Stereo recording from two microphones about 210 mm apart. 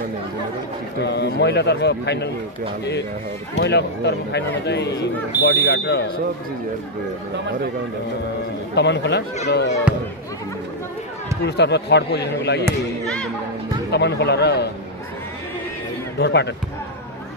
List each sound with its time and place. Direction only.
1.0 s a man's voice: 55° left (ahead or behind)
3.5 s speech: 55° left (ahead or behind)
8.7 s a man's voice: 55° left (ahead or behind)
11.4 s a man's voice: 55° left (ahead or behind)
13.0 s speech: 5° left (ahead or behind)
13.9 s a man's voice: 55° left (ahead or behind)
16.2 s a man's voice: 55° left (ahead or behind)